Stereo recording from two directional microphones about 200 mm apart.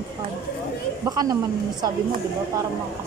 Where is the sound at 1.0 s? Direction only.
20° right (ahead or behind).